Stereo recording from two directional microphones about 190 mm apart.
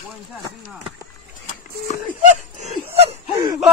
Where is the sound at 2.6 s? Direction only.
35° right (ahead or behind).